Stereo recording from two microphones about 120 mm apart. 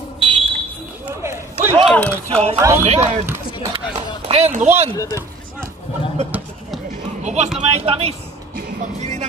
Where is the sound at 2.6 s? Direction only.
25° right (ahead or behind).